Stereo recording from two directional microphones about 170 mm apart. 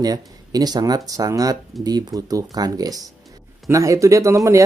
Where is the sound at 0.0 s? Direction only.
20° right (ahead or behind).